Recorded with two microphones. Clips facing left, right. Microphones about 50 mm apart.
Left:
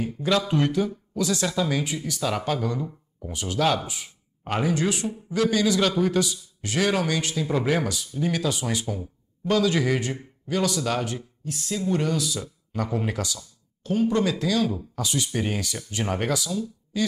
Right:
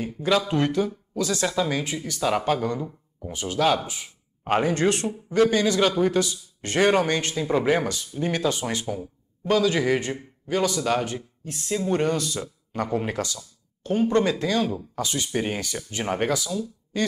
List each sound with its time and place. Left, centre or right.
0.0 s speech: centre
4.5 s speech: right
4.7 s speech: right
5.3 s speech: right
6.6 s speech: right
7.3 s speech: centre
8.9 s speech: centre
9.9 s speech: right
10.4 s speech: centre; by 12.9 s right
12.9 s speech: centre
13.2 s speech: right
15.1 s speech: centre